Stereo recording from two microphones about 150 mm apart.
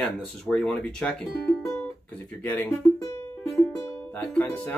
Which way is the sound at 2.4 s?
10° left (ahead or behind).